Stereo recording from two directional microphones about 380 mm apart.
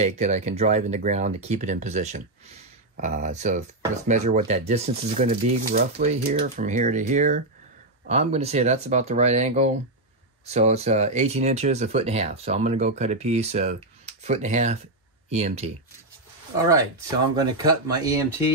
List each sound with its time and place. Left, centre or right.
0.0 s speech: centre
17.4 s speech: centre